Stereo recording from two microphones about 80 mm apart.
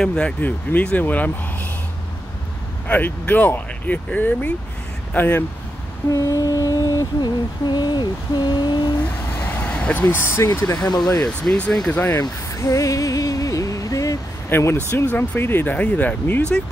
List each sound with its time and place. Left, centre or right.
0.0 s speech: centre
0.4 s speech: left
2.9 s speech: left
6.1 s a sound: left
7.6 s speech: left
9.4 s vehicle: left
10.0 s speech: left
10.7 s speech: left
11.2 s speech: centre
12.1 s a sound: left
14.5 s speech: left